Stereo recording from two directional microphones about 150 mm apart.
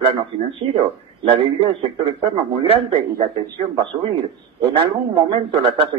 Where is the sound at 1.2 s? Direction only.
35° right (ahead or behind).